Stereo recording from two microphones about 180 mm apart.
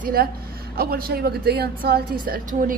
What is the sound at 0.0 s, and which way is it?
Speech, 55° right (ahead or behind).